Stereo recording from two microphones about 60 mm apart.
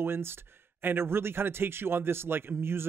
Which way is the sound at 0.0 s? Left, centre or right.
Right.